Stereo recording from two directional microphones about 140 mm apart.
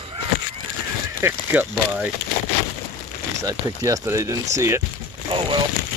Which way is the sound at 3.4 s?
25° right (ahead or behind).